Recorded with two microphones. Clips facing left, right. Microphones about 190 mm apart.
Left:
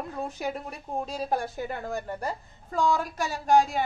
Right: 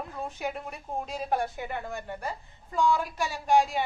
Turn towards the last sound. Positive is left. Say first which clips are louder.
# left 2 dB
turn(degrees=40)  # may be behind; listen again after turning